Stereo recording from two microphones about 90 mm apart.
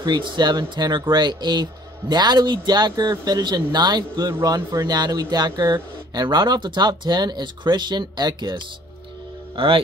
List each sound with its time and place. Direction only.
0.0 s speech: 55° right (ahead or behind)
4.3 s speech: 40° right (ahead or behind)
9.6 s a man's voice: 90° right